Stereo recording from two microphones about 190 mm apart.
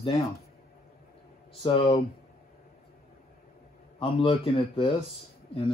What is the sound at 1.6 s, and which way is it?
Speech, 30° left (ahead or behind).